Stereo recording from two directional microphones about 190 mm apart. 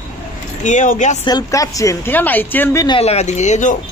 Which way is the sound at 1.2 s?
20° left (ahead or behind).